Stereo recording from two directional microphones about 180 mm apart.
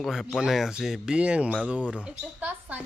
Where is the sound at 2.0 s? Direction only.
10° right (ahead or behind).